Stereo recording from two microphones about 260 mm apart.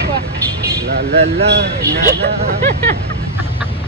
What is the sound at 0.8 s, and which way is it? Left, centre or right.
Speech, right.